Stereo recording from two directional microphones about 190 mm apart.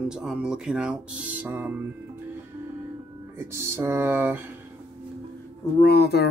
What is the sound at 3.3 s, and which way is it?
Speech, 15° right (ahead or behind).